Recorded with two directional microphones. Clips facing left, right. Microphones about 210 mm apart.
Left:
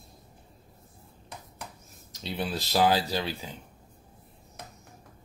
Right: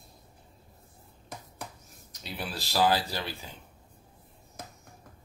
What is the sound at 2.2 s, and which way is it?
Speech, 20° left (ahead or behind).